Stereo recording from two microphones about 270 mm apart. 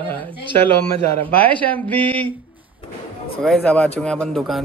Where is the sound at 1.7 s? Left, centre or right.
Centre.